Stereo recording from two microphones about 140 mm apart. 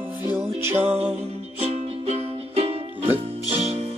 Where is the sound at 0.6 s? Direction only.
15° right (ahead or behind).